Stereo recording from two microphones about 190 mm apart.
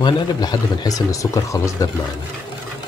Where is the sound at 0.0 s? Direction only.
20° left (ahead or behind).